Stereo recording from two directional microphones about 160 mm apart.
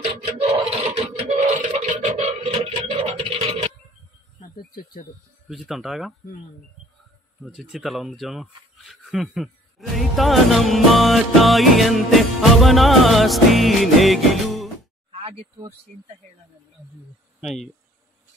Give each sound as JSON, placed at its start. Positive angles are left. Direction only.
{"t": 0.8, "sound": "a sound", "side_deg": -40}
{"t": 4.4, "sound": "insect", "side_deg": 65}
{"t": 5.5, "sound": "speech", "side_deg": 0}
{"t": 7.4, "sound": "speech", "side_deg": 0}
{"t": 15.0, "sound": "speech", "side_deg": -35}
{"t": 17.4, "sound": "speech", "side_deg": 0}